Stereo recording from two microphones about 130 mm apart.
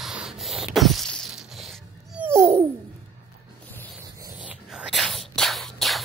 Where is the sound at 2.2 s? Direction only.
20° right (ahead or behind).